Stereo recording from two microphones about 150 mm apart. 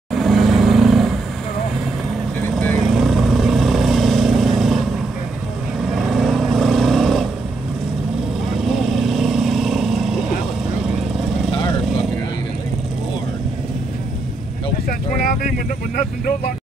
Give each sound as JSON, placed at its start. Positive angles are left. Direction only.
{"t": 0.1, "sound": "vehicle", "side_deg": 0}
{"t": 2.5, "sound": "vehicle", "side_deg": 5}
{"t": 5.9, "sound": "vehicle", "side_deg": 0}
{"t": 8.5, "sound": "vehicle", "side_deg": 0}
{"t": 14.9, "sound": "vehicle", "side_deg": 70}